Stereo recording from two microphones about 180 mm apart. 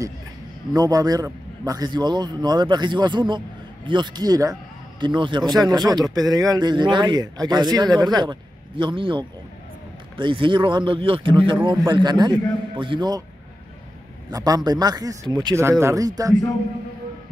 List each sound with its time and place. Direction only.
0.7 s speech: 20° right (ahead or behind)
11.5 s speech: 20° right (ahead or behind)
14.3 s speech: 20° right (ahead or behind)